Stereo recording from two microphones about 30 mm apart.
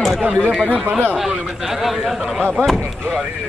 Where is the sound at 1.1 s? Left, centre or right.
Centre.